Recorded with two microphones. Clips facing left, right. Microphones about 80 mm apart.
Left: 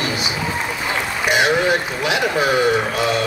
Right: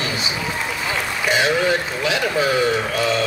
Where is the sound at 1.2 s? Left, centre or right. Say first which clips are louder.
Left 2 dB; centre.